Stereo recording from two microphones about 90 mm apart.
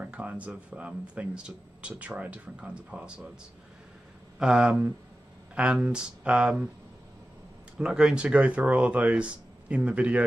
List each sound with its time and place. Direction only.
0.0 s speech: 15° right (ahead or behind)
4.4 s speech: 10° right (ahead or behind)
7.7 s speech: 10° right (ahead or behind)